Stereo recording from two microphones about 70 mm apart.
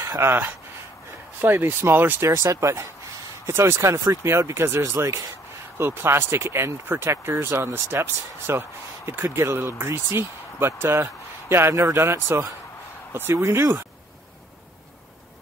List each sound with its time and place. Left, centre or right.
0.0 s speech: right
1.4 s speech: right
2.2 s speech: right